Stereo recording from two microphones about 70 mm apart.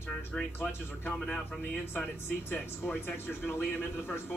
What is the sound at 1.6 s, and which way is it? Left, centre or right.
Speech, left.